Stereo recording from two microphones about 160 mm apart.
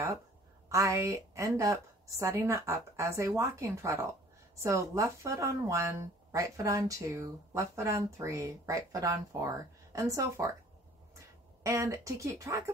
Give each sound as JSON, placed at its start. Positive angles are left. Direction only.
{"t": 0.7, "sound": "a woman's voice", "side_deg": -20}
{"t": 11.6, "sound": "a woman's voice", "side_deg": -20}